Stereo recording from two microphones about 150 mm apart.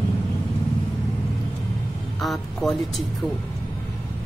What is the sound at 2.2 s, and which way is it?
Speech, centre (ahead or behind).